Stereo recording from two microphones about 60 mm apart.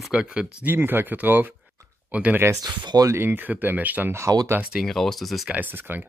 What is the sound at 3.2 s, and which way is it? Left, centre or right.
Speech, right.